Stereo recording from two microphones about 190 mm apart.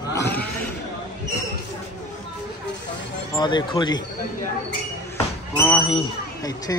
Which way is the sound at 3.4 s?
25° left (ahead or behind).